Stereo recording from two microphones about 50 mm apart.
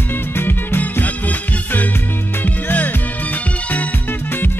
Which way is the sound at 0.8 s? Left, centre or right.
Left.